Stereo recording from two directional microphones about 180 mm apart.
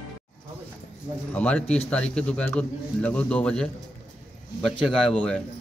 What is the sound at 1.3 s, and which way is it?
Speech, 5° left (ahead or behind).